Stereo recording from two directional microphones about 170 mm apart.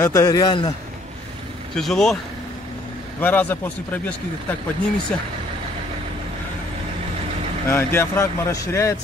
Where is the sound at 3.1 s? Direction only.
10° left (ahead or behind).